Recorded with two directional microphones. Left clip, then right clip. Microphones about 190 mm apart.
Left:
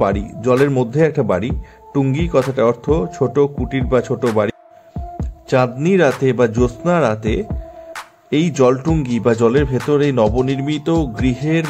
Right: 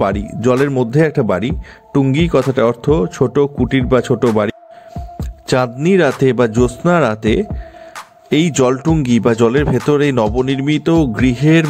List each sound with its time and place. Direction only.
0.0 s speech: 30° right (ahead or behind)
5.5 s speech: 35° right (ahead or behind)